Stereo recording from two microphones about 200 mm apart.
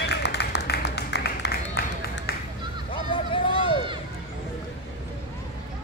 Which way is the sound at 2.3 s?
50° left (ahead or behind).